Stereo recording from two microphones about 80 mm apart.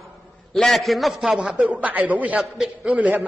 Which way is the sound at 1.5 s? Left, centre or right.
Centre.